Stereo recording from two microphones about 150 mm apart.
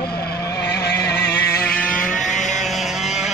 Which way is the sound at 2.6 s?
Centre (ahead or behind).